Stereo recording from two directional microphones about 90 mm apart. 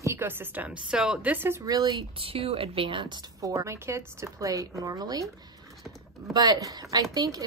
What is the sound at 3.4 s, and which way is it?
Speech, 35° right (ahead or behind).